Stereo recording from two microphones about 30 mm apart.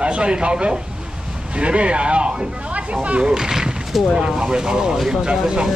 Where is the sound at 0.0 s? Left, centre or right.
Right.